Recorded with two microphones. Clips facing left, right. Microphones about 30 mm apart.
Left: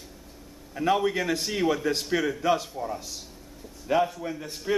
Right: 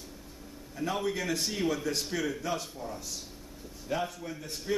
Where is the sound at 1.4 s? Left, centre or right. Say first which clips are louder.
Left 5 dB; centre; by 4.0 s left.